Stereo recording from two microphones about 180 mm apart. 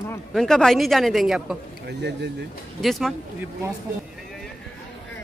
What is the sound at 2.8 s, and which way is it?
Speech, centre (ahead or behind).